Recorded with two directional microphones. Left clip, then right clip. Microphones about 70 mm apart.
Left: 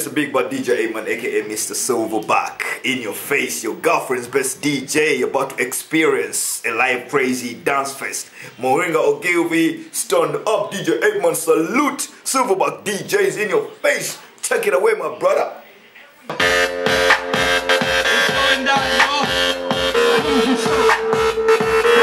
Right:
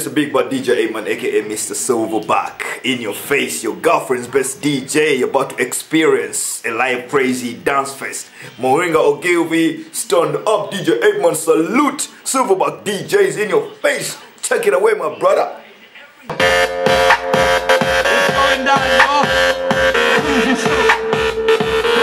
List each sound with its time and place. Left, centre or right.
0.0 s speech: centre
16.3 s music: right
21.2 s music: centre